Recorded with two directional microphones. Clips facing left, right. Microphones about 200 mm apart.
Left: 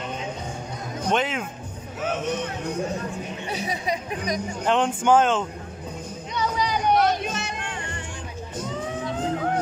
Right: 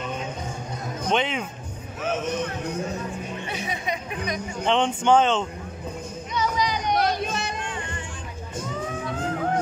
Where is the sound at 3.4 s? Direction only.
35° left (ahead or behind).